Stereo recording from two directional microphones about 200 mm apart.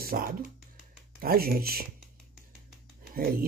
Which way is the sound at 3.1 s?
45° right (ahead or behind).